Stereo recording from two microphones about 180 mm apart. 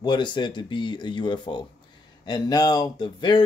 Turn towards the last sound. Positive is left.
turn(degrees=25)  # may be behind; listen again after turning